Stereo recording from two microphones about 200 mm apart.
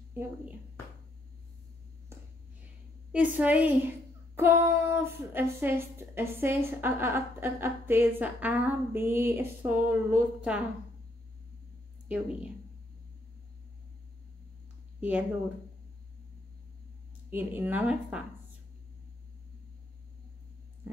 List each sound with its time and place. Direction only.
0.1 s a woman's voice: 10° right (ahead or behind)
3.3 s a woman's voice: 5° right (ahead or behind)
15.0 s speech: 5° right (ahead or behind)
17.3 s a woman's voice: 10° right (ahead or behind)